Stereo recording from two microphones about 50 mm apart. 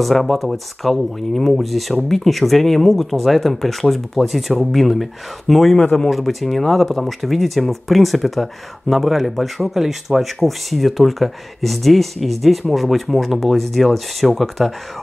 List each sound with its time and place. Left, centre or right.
0.0 s speech: centre
5.8 s speech: centre
6.0 s speech: centre